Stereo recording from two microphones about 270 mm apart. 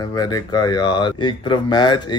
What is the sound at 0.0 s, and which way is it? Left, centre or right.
A man's voice, centre.